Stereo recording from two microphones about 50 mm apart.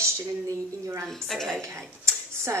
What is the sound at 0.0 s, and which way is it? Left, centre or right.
Speech, right.